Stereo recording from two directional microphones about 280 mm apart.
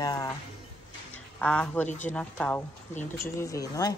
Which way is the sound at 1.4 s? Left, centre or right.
Centre.